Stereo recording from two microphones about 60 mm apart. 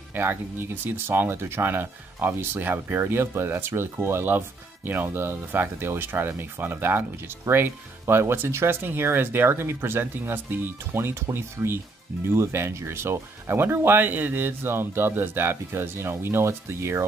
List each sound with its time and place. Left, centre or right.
0.1 s speech: right